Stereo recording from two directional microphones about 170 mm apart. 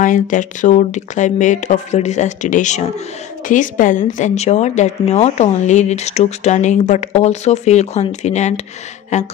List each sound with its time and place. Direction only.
0.0 s a woman's voice: 50° left (ahead or behind)